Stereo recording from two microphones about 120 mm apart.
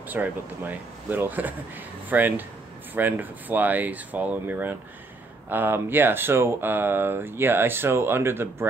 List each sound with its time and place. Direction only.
0.1 s speech: 15° right (ahead or behind)